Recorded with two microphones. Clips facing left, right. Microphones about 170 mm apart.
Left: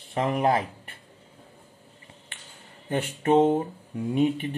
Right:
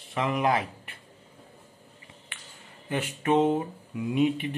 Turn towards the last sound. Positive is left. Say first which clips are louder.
# left 1 dB
turn(degrees=35)  # may be behind; listen again after turning